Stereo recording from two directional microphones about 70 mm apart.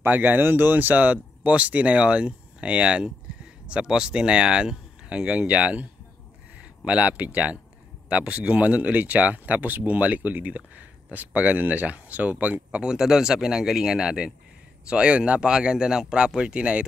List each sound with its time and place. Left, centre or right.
0.0 s speech: right
12.9 s speech: centre